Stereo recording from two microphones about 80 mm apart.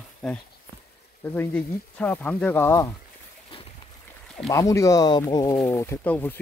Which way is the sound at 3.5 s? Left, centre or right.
Left.